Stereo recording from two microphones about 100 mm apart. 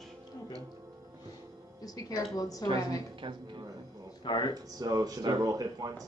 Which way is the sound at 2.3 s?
35° left (ahead or behind).